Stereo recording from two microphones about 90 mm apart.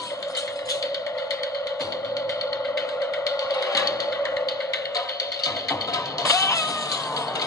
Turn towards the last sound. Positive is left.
turn(degrees=40)  # may be behind; listen again after turning